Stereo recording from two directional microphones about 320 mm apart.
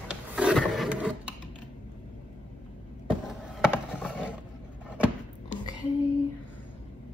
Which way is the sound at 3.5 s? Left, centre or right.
Centre.